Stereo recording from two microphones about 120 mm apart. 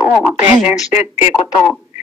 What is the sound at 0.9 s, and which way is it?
Speech, 65° left (ahead or behind).